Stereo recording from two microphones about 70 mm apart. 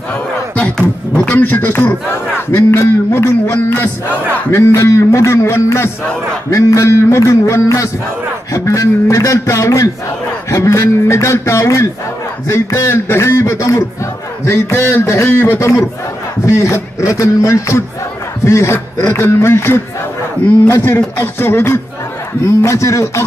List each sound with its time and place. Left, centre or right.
1.1 s a man's voice: centre; by 23.2 s left